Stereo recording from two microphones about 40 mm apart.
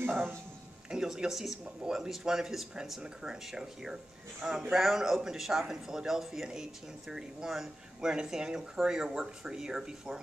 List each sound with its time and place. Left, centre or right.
0.8 s speech: centre